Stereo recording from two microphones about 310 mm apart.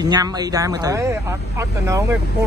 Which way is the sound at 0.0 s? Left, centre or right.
Centre.